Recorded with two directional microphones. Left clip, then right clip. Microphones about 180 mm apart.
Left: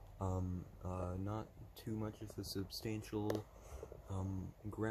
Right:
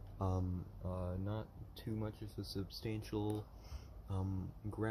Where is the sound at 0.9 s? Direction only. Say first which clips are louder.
Even; 35° left (ahead or behind).